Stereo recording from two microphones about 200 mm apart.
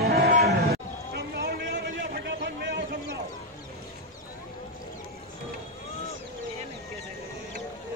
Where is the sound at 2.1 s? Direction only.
60° right (ahead or behind).